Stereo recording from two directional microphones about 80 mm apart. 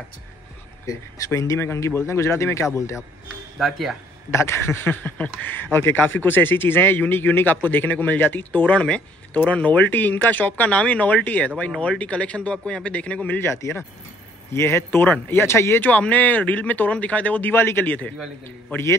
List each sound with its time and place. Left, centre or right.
0.8 s speech: left
3.5 s speech: centre
4.3 s speech: left
4.8 s a man's voice: left
13.4 s speech: left
15.8 s a man's voice: centre